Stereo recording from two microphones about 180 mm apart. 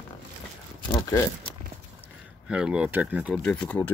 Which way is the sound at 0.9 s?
20° left (ahead or behind).